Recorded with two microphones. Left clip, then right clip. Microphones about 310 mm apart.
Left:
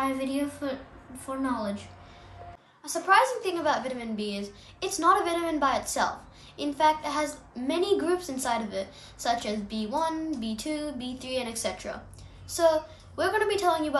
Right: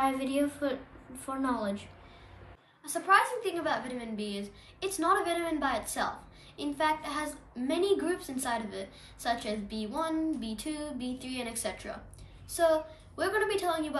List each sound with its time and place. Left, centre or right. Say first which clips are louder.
0.0 s a woman's voice: even; centre
2.8 s a child's voice: left 3 dB; centre